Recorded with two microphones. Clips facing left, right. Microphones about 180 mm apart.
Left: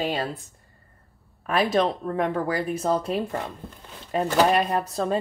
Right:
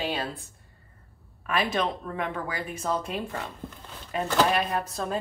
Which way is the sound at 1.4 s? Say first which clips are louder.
Left 5 dB; 35° left (ahead or behind).